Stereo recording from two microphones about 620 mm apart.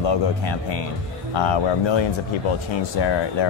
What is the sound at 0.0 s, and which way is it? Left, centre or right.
Speech, left.